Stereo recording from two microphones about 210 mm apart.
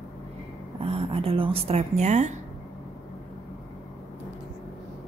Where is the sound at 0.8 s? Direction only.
30° right (ahead or behind).